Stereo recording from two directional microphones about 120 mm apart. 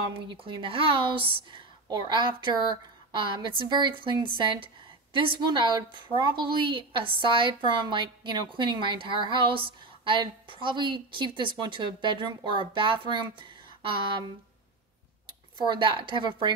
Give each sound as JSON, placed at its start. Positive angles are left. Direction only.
{"t": 0.1, "sound": "a woman's voice", "side_deg": -45}
{"t": 15.5, "sound": "a woman's voice", "side_deg": -40}